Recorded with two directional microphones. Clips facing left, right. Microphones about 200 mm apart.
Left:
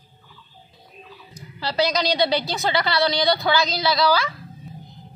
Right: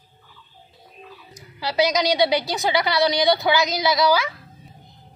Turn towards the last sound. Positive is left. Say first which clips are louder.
# right 1 dB
turn(degrees=-15)  # may be behind; listen again after turning